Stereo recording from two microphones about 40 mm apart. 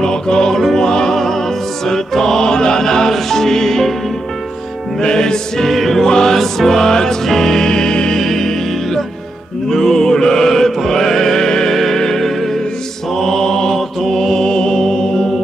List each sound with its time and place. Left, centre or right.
0.0 s music: centre
5.0 s music: centre
5.7 s music: centre
6.0 s music: centre
8.2 s music: centre
13.2 s mantra: centre
14.0 s music: centre
14.4 s music: centre